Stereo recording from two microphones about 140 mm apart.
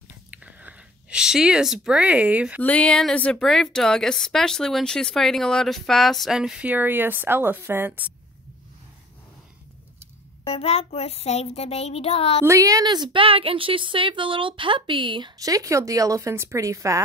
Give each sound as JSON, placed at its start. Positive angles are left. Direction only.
{"t": 0.3, "sound": "speech", "side_deg": -10}
{"t": 2.6, "sound": "a woman's voice", "side_deg": 10}
{"t": 10.4, "sound": "a child's voice", "side_deg": 45}
{"t": 12.4, "sound": "a woman's voice", "side_deg": -25}